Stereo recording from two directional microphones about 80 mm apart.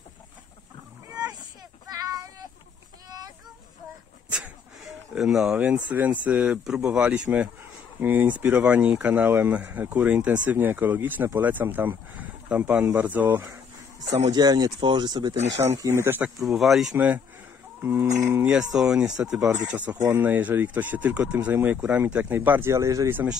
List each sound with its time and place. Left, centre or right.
1.9 s child singing: right
3.1 s a sound: right
4.3 s a sound: centre
5.6 s speech: centre
14.3 s speech: right
14.8 s speech: right
15.6 s speech: right
15.9 s speech: right
16.3 s speech: centre
18.4 s speech: centre
22.7 s speech: right